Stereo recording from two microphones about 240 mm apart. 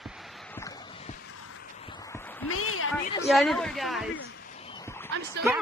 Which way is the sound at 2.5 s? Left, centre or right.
Left.